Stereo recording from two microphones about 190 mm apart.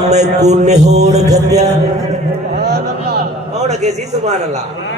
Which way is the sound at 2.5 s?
60° right (ahead or behind).